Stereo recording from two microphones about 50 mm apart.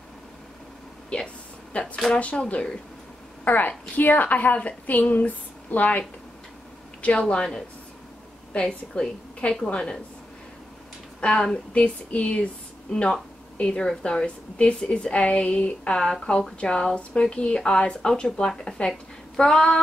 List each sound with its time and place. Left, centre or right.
1.1 s a sound: left
2.1 s a woman's voice: left
8.5 s a woman's voice: centre
11.1 s a woman's voice: left
12.9 s a woman's voice: centre